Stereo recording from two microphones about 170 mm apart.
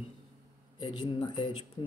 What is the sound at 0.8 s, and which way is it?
Speech, 25° left (ahead or behind).